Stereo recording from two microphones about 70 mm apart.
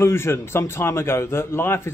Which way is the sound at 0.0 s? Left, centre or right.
Left.